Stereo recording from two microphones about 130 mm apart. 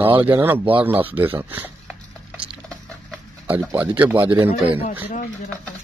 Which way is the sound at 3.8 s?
15° right (ahead or behind).